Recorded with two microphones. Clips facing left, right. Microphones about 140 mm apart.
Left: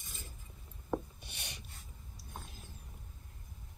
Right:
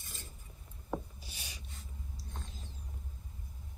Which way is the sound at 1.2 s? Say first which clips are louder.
Left 1 dB; 60° left (ahead or behind).